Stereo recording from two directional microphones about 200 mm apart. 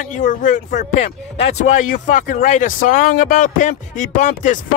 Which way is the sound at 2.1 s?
40° left (ahead or behind).